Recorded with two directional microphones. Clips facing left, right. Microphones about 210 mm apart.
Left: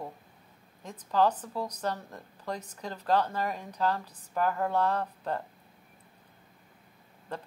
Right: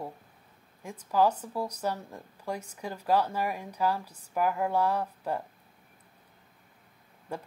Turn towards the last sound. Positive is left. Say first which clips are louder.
# right 1 dB
turn(degrees=-10)  # may be behind; listen again after turning